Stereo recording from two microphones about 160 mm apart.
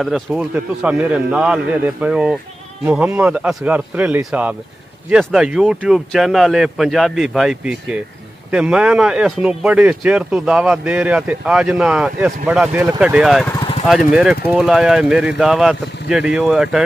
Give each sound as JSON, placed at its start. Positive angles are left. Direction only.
{"t": 0.0, "sound": "speech", "side_deg": -5}
{"t": 13.6, "sound": "vehicle", "side_deg": 35}
{"t": 13.8, "sound": "speech", "side_deg": -5}